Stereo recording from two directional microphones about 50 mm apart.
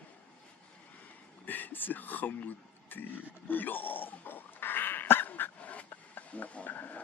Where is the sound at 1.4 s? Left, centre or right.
Left.